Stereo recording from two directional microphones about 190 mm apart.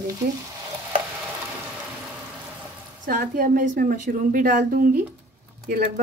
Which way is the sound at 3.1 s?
50° right (ahead or behind).